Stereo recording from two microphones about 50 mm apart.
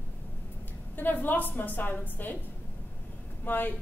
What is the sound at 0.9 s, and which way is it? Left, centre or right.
A woman's voice, left.